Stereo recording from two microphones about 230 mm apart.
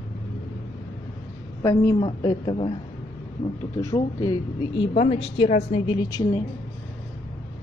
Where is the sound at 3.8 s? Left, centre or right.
Centre.